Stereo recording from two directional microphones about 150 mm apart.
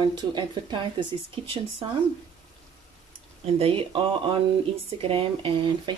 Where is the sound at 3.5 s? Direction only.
40° right (ahead or behind).